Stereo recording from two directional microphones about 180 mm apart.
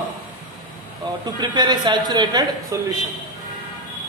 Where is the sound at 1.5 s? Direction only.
25° right (ahead or behind).